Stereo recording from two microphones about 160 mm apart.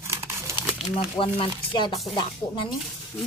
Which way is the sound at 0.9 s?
35° left (ahead or behind).